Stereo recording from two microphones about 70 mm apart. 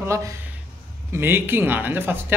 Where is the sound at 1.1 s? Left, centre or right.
Right.